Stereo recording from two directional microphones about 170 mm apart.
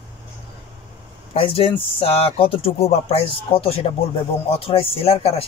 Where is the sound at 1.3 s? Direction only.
35° left (ahead or behind).